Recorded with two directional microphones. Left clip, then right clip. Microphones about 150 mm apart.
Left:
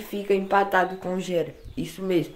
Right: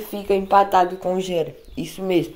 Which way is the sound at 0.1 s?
5° right (ahead or behind).